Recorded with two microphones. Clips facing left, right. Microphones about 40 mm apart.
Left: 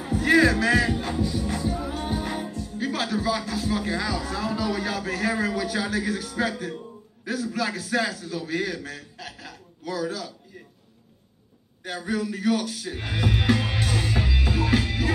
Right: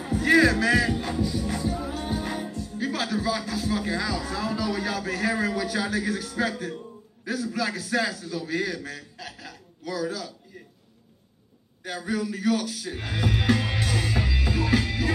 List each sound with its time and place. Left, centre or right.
0.0 s music: left
1.7 s music: left
4.7 s a man's voice: left
9.2 s a sound: left
11.8 s speech: left
13.7 s music: left